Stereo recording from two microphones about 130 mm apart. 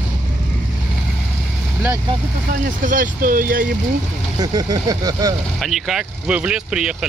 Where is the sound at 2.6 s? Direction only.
90° right.